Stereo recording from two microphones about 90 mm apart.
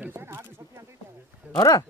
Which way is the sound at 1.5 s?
40° left (ahead or behind).